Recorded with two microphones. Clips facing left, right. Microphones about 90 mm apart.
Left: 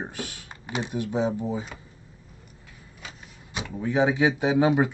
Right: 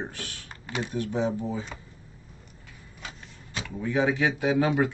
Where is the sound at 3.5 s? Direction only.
20° left (ahead or behind).